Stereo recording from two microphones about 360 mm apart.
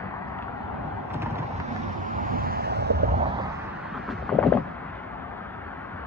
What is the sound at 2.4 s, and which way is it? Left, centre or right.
Vehicle, right.